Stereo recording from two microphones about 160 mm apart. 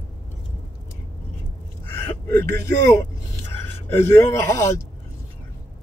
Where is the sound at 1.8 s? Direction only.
15° left (ahead or behind).